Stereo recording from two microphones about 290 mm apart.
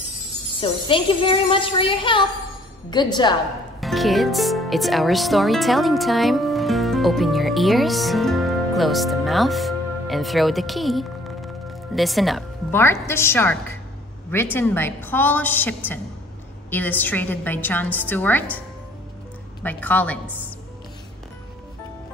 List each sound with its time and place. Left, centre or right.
0.6 s a woman's voice: centre
3.8 s a woman's voice: centre
19.6 s a woman's voice: centre